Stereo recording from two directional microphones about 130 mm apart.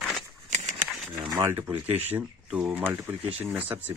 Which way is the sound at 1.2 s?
30° right (ahead or behind).